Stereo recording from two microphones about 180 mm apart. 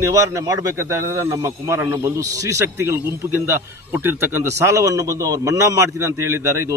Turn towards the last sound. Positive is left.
turn(degrees=-15)  # may be behind; listen again after turning